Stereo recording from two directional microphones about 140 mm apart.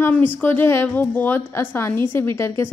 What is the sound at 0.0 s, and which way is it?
A woman's voice, 15° left (ahead or behind).